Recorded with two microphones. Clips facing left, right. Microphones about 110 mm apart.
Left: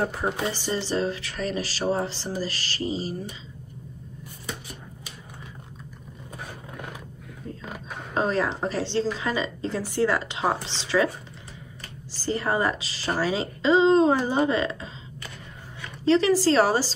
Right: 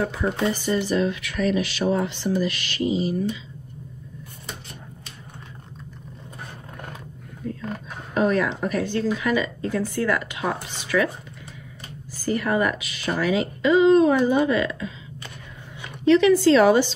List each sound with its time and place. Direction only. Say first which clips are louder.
0.5 s speech: right 5 dB; 30° left (ahead or behind)
8.1 s a woman's voice: right 3 dB; 30° left (ahead or behind)
12.3 s a woman's voice: right 2 dB; 30° left (ahead or behind)
16.0 s a woman's voice: right 4 dB; 35° left (ahead or behind)